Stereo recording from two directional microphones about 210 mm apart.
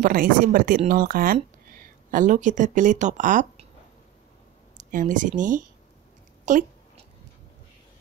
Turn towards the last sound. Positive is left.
turn(degrees=-35)  # may be behind; listen again after turning